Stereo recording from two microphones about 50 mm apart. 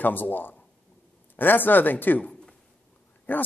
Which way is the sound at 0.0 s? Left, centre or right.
Left.